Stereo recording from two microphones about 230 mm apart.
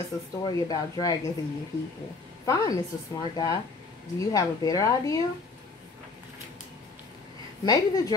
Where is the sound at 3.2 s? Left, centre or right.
Centre.